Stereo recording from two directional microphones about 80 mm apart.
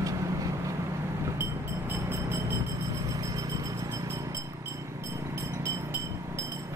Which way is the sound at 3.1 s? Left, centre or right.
Right.